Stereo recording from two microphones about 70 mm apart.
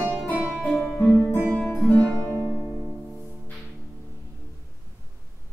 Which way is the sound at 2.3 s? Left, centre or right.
Right.